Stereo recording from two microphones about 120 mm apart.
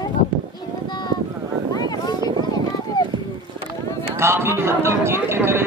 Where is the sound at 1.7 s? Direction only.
35° left (ahead or behind).